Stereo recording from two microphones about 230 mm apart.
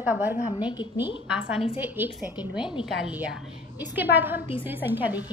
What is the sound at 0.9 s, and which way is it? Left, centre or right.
A woman's voice, centre.